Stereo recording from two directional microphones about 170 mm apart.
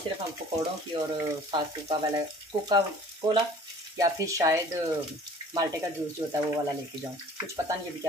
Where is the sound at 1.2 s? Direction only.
25° right (ahead or behind).